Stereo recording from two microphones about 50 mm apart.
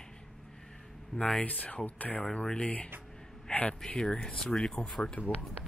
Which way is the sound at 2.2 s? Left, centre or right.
Centre.